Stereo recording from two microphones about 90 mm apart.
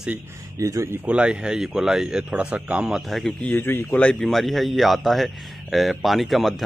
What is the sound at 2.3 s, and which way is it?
Speech, 15° right (ahead or behind).